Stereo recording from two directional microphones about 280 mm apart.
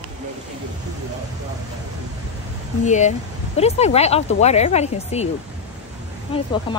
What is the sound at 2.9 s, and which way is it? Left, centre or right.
Speech, left.